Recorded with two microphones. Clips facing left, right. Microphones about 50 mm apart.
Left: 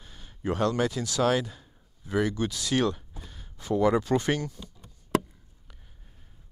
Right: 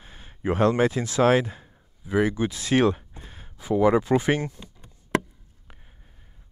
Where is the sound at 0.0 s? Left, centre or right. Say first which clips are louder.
Right 4 dB; right.